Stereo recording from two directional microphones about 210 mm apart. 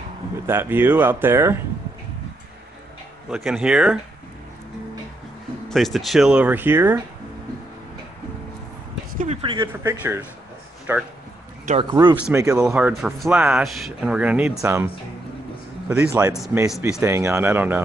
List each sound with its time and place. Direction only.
0.5 s speech: 10° right (ahead or behind)
3.3 s speech: 5° right (ahead or behind)
5.7 s speech: centre (ahead or behind)
9.2 s speech: 30° right (ahead or behind)
9.7 s speech: 10° right (ahead or behind)
15.9 s speech: 5° right (ahead or behind)